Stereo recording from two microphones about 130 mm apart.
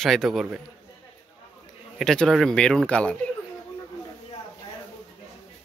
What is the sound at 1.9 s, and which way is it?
Speech, 5° left (ahead or behind).